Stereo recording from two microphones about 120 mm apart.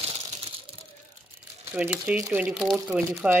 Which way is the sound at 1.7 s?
15° right (ahead or behind).